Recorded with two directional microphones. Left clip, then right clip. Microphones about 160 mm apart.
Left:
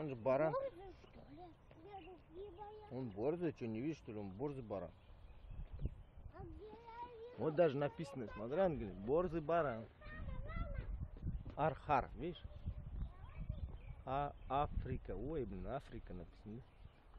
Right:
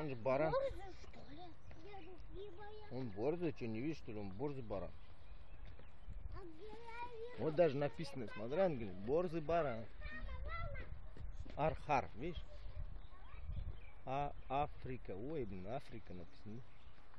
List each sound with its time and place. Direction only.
0.0 s speech: 5° left (ahead or behind)
0.5 s speech: 40° right (ahead or behind)
2.9 s speech: 5° left (ahead or behind)
7.3 s speech: 10° left (ahead or behind)
10.0 s a sound: 45° left (ahead or behind)
11.5 s speech: 10° left (ahead or behind)
14.0 s speech: 10° left (ahead or behind)